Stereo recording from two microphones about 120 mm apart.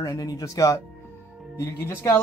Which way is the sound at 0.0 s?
30° left (ahead or behind).